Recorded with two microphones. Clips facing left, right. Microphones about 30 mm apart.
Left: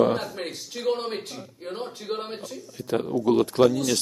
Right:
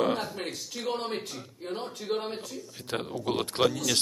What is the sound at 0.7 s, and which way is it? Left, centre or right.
A man's voice, centre.